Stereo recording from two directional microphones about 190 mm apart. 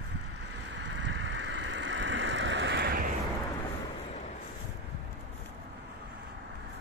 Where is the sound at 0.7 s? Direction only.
70° right (ahead or behind).